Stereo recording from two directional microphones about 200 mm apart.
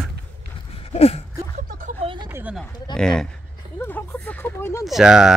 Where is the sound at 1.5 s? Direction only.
40° right (ahead or behind).